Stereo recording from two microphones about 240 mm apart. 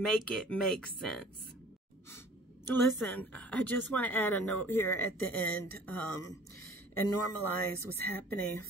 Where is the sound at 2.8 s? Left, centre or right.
Centre.